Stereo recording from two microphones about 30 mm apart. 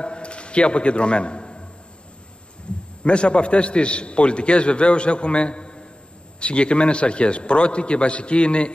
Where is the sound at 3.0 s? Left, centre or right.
Left.